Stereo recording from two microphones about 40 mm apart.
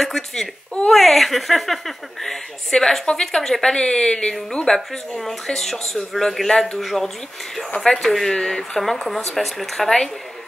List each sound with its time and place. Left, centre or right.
0.0 s speech: centre
3.7 s speech: left; by 9.8 s centre